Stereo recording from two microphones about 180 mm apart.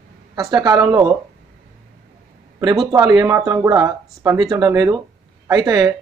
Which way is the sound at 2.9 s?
20° right (ahead or behind).